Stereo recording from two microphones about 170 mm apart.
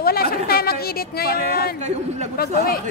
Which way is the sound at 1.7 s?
40° right (ahead or behind).